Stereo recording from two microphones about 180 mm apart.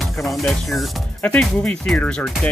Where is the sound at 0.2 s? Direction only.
Centre (ahead or behind).